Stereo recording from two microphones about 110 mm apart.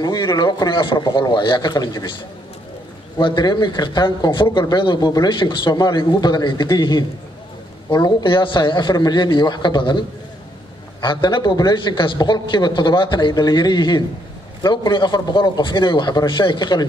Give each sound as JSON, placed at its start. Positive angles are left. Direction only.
{"t": 0.0, "sound": "speech", "side_deg": 35}
{"t": 3.2, "sound": "a man's voice", "side_deg": 45}
{"t": 11.0, "sound": "a man's voice", "side_deg": 45}